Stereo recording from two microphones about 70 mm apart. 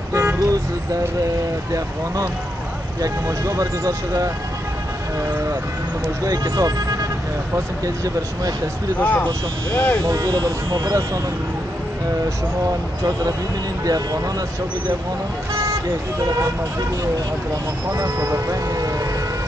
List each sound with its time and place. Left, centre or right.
0.1 s vehicle: right
3.0 s speech: right
6.2 s speech: right
7.5 s speech: right
9.0 s speech: left
10.0 s speech: right
13.8 s speech: right
17.9 s speech: right
18.8 s vehicle: right